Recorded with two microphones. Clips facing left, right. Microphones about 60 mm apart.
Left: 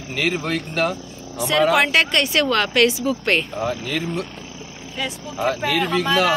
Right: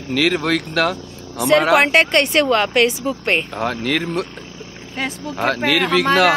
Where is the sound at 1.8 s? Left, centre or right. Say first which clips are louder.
Right 3 dB; right.